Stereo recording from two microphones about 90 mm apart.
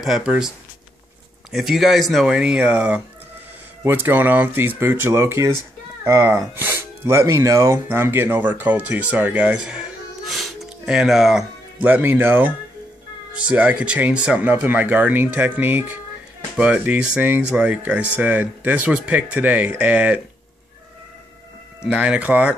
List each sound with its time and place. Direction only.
0.0 s speech: 5° right (ahead or behind)
1.5 s speech: centre (ahead or behind)
3.8 s speech: 25° right (ahead or behind)
10.2 s music: centre (ahead or behind)
11.8 s speech: 20° right (ahead or behind)
21.8 s speech: 15° right (ahead or behind)